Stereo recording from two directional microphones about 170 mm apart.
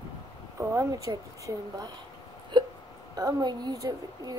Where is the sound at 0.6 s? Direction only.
20° right (ahead or behind).